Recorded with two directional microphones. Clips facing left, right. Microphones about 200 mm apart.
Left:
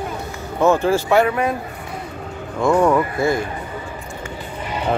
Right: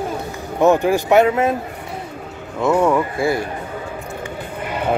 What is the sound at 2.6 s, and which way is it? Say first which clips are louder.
Speech: even; 5° right (ahead or behind).